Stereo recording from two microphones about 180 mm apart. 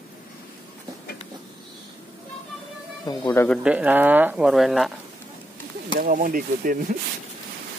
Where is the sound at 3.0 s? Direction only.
15° left (ahead or behind).